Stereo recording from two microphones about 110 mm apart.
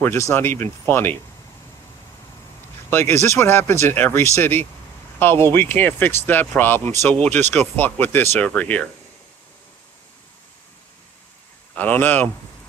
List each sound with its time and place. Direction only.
0.3 s speech: 20° left (ahead or behind)
2.9 s speech: 20° left (ahead or behind)
11.7 s speech: 15° left (ahead or behind)